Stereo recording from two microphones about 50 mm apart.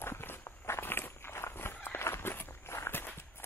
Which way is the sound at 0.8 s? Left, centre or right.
Left.